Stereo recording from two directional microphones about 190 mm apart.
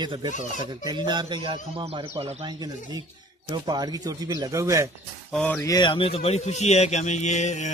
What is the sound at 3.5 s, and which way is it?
Speech, 20° right (ahead or behind).